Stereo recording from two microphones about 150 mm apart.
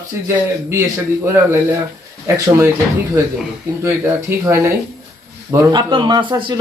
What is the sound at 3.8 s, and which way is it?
Speech, 15° right (ahead or behind).